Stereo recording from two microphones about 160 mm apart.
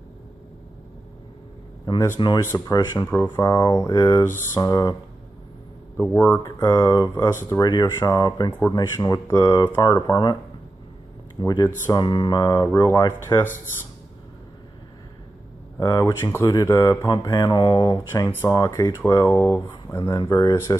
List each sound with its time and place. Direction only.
2.1 s speech: 30° left (ahead or behind)
5.9 s speech: 15° left (ahead or behind)
11.3 s speech: 25° left (ahead or behind)
15.8 s speech: 20° left (ahead or behind)
19.3 s speech: 10° left (ahead or behind)
19.7 s speech: 25° left (ahead or behind)